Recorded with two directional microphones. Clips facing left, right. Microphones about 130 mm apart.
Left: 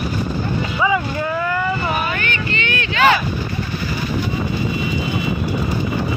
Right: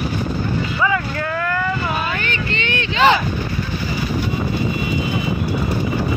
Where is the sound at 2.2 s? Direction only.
30° right (ahead or behind).